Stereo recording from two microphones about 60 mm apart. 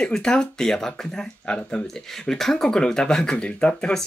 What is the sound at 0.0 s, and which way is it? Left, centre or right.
Speech, centre.